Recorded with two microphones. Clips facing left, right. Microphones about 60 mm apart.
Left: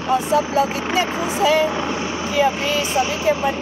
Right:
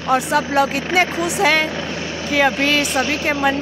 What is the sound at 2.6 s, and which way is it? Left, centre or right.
Speech, right.